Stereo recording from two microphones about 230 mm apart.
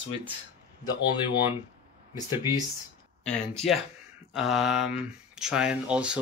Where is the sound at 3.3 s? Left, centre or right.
Centre.